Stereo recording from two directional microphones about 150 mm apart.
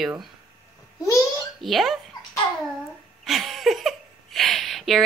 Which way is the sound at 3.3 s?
Centre (ahead or behind).